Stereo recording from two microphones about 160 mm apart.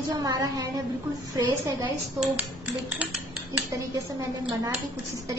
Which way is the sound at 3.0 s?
10° right (ahead or behind).